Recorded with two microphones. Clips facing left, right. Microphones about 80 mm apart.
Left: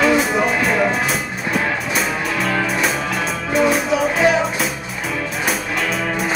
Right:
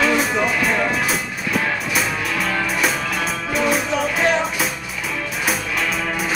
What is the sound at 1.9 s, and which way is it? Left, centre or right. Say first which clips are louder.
Music: left 1 dB; centre.